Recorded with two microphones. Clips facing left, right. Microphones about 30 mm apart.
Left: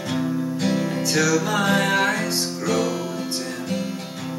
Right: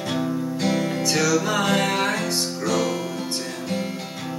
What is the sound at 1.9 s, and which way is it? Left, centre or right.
Music, centre.